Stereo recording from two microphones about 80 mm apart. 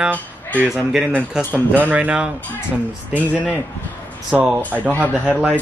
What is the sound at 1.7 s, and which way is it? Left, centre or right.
Speech, right.